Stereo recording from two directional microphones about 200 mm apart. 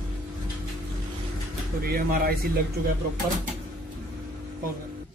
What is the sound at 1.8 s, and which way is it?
Speech, 50° right (ahead or behind).